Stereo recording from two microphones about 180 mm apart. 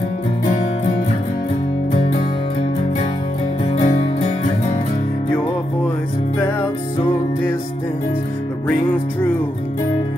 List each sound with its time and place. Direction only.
3.7 s music: 35° left (ahead or behind)
6.4 s music: 20° left (ahead or behind)